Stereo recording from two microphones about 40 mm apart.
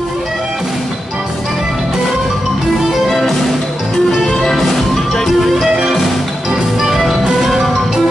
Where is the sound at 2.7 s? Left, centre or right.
Centre.